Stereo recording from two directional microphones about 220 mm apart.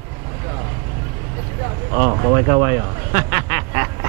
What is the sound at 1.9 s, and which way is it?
Speech, 20° right (ahead or behind).